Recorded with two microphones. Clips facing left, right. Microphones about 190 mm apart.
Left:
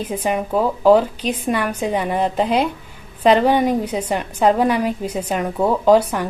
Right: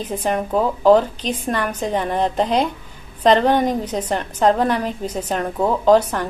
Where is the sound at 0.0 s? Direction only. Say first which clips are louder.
Even; 10° left (ahead or behind).